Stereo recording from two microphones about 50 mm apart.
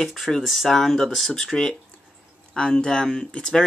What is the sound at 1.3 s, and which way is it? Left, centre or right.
A man's voice, centre.